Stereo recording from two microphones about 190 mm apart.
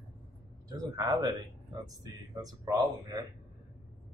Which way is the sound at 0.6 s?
20° right (ahead or behind).